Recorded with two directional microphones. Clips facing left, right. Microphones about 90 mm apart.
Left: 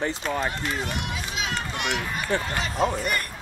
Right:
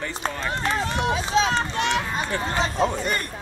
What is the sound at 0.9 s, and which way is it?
Speech, 30° right (ahead or behind).